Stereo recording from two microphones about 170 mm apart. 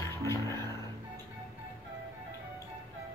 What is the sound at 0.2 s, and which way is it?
Music, 15° left (ahead or behind).